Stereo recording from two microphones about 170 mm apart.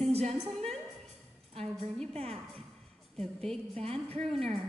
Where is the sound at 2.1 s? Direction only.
35° right (ahead or behind).